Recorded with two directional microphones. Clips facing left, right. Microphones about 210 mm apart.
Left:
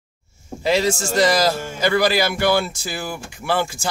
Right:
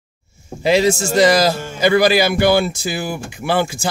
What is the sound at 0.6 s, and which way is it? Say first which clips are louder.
Speech: right 4 dB; 15° right (ahead or behind).